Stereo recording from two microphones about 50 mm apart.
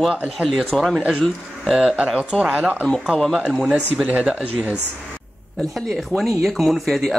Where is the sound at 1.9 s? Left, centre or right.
Right.